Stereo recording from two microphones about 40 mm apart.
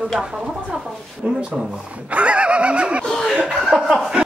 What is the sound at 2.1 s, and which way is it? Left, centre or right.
Snicker, right.